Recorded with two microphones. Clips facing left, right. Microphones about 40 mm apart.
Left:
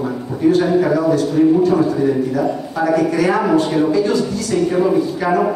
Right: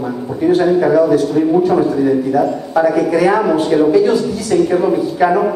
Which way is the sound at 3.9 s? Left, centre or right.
Centre.